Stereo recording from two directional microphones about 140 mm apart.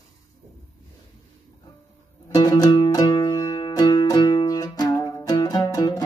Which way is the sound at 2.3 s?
30° left (ahead or behind).